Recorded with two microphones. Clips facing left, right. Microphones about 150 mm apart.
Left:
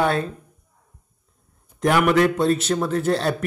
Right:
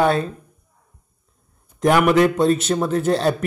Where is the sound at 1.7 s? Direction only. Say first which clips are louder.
Right 3 dB; 20° right (ahead or behind).